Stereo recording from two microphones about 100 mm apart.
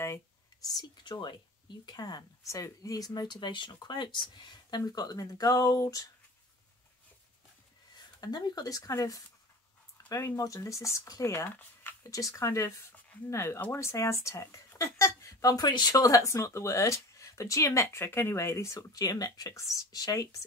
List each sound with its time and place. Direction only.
0.0 s speech: 35° left (ahead or behind)
3.1 s speech: 50° left (ahead or behind)
7.9 s speech: 45° left (ahead or behind)